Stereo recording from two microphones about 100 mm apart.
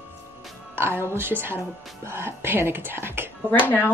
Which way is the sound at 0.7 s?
25° right (ahead or behind).